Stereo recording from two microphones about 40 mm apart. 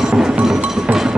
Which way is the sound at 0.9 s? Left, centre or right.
Right.